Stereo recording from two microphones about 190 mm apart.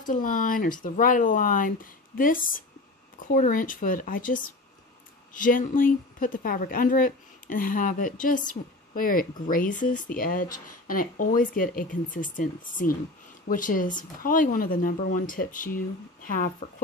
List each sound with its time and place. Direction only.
0.0 s speech: 45° left (ahead or behind)
5.4 s speech: 45° left (ahead or behind)